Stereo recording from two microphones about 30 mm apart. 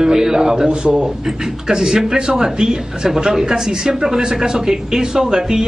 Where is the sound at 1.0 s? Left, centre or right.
Centre.